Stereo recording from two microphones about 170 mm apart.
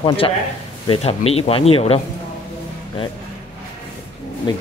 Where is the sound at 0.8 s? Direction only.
35° left (ahead or behind).